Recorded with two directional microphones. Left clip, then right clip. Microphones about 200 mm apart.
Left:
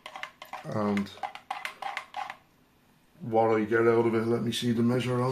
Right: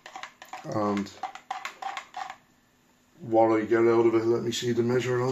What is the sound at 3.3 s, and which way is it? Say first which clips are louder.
Speech: right 2 dB; 15° right (ahead or behind).